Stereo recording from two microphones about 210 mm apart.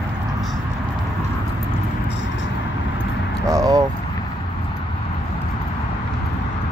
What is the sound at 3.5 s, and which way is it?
Speech, 15° right (ahead or behind).